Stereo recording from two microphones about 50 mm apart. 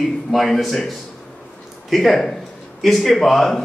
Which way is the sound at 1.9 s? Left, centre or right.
Centre.